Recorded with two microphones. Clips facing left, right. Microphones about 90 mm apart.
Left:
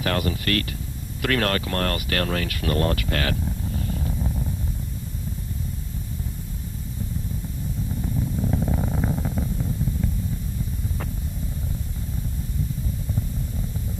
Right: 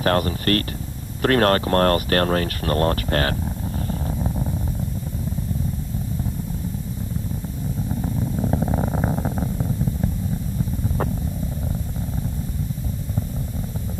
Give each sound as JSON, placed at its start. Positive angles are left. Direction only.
{"t": 0.0, "sound": "speech", "side_deg": -40}
{"t": 3.8, "sound": "a sound", "side_deg": -35}
{"t": 8.0, "sound": "purr", "side_deg": -35}